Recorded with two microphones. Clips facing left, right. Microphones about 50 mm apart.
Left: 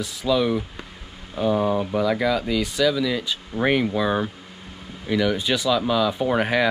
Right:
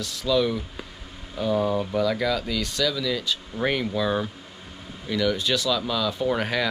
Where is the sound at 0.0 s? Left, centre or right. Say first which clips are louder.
Left 2 dB; centre.